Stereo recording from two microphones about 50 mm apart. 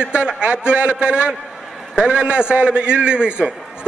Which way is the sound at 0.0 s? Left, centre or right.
Right.